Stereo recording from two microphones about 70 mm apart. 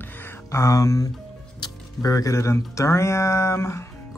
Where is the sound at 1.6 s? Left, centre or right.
Left.